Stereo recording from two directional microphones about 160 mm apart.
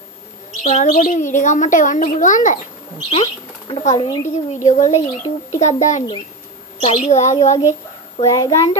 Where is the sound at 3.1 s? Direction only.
30° left (ahead or behind).